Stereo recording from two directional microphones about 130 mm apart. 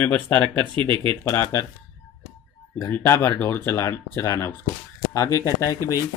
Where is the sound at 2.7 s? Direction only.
20° left (ahead or behind).